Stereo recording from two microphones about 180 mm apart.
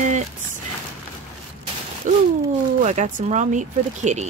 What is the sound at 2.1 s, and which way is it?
Speech, 45° right (ahead or behind).